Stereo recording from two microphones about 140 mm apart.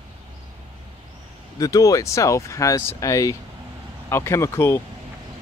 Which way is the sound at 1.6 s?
25° left (ahead or behind).